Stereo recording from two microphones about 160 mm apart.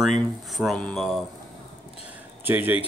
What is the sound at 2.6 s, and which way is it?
Speech, 35° left (ahead or behind).